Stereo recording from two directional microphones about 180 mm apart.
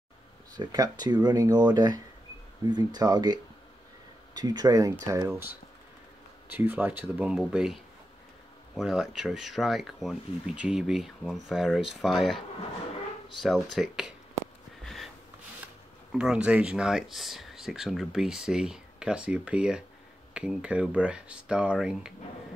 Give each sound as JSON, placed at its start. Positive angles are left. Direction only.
{"t": 0.6, "sound": "speech", "side_deg": -20}
{"t": 6.5, "sound": "speech", "side_deg": -10}
{"t": 13.4, "sound": "speech", "side_deg": 0}
{"t": 14.8, "sound": "sniff", "side_deg": 0}
{"t": 16.1, "sound": "speech", "side_deg": -5}